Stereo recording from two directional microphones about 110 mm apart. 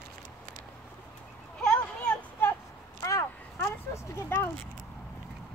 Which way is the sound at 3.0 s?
25° left (ahead or behind).